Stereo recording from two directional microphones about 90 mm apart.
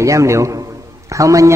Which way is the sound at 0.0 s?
35° right (ahead or behind).